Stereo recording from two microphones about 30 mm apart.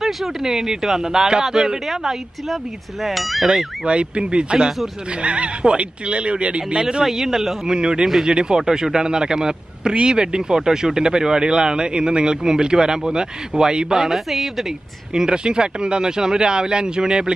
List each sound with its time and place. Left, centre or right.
0.0 s speech: centre
3.0 s a woman's voice: centre
3.8 s speech: right
6.8 s speech: right
7.1 s speech: centre
7.6 s speech: right
13.9 s a woman's voice: centre
15.1 s speech: right